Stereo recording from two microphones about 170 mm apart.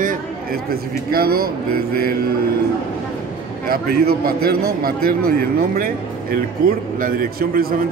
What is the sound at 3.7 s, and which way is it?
A man's voice, 60° right (ahead or behind).